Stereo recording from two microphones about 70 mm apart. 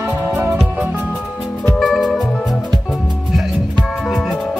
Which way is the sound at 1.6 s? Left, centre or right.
Centre.